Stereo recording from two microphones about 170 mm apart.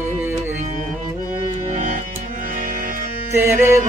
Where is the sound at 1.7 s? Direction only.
45° right (ahead or behind).